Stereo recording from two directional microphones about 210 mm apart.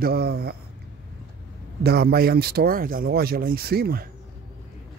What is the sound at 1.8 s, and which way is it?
Speech, 50° right (ahead or behind).